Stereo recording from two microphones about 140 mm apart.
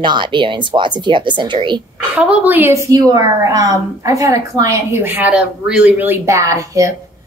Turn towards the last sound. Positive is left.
turn(degrees=-25)  # may be behind; listen again after turning